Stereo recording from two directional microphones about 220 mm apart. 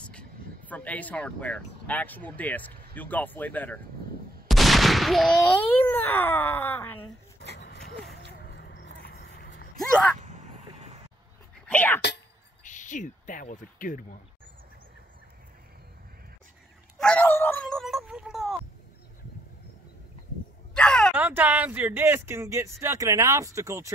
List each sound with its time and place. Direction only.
0.7 s speech: 5° left (ahead or behind)
7.5 s a sound: 50° left (ahead or behind)
9.8 s speech: 5° left (ahead or behind)
10.2 s a sound: 30° right (ahead or behind)
11.6 s whispering: 5° left (ahead or behind)
12.6 s speech: 35° left (ahead or behind)
17.0 s dog: 10° left (ahead or behind)
20.7 s a sound: 5° left (ahead or behind)
21.2 s speech: 10° right (ahead or behind)